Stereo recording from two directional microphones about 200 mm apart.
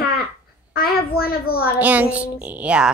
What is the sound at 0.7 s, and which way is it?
Speech, 50° left (ahead or behind).